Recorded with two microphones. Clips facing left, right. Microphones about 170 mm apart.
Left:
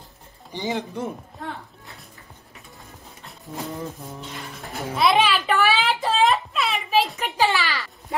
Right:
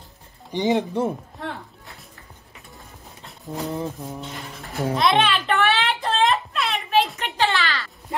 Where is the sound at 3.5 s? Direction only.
35° right (ahead or behind).